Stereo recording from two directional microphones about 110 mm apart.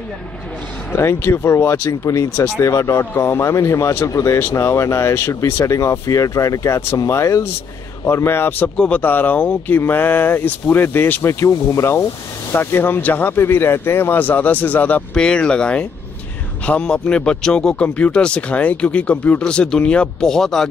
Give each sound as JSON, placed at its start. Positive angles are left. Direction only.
{"t": 0.9, "sound": "speech", "side_deg": 25}